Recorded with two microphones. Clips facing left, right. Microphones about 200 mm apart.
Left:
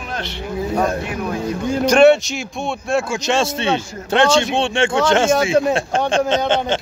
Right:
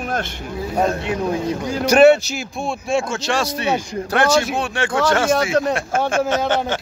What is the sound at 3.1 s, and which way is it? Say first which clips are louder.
Speech: left 3 dB; 20° left (ahead or behind).